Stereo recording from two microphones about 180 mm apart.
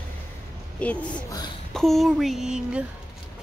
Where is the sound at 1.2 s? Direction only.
20° left (ahead or behind).